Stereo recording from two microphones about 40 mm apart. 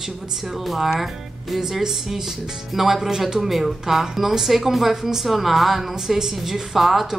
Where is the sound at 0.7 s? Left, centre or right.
Centre.